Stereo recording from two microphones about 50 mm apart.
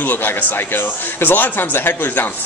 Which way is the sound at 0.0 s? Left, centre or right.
Left.